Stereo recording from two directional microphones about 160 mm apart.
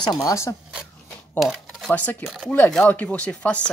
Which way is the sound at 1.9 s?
10° left (ahead or behind).